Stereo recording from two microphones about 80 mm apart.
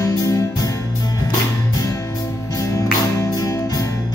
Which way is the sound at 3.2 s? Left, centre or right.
Left.